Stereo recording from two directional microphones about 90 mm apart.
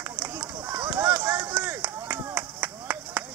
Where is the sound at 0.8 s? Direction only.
20° right (ahead or behind).